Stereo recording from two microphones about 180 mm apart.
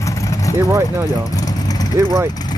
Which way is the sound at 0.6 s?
15° right (ahead or behind).